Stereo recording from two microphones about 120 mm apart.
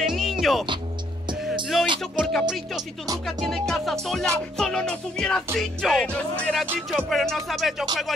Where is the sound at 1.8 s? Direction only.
40° right (ahead or behind).